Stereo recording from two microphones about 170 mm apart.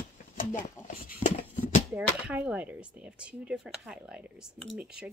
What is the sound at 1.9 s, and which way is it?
Speech, 10° right (ahead or behind).